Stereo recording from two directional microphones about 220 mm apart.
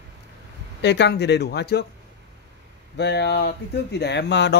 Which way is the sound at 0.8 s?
50° left (ahead or behind).